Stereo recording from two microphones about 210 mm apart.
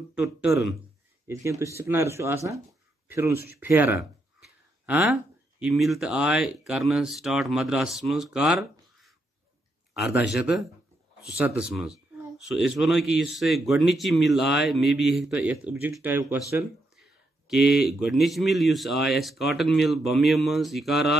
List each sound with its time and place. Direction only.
0.1 s speech: 10° right (ahead or behind)
17.5 s speech: centre (ahead or behind)